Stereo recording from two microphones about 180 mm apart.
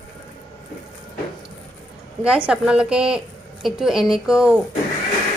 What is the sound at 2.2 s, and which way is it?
A woman's voice, 5° right (ahead or behind).